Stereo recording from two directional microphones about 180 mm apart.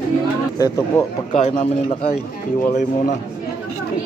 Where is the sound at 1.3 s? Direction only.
40° left (ahead or behind).